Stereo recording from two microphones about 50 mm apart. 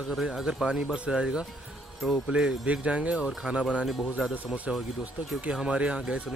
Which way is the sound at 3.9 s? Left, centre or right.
Centre.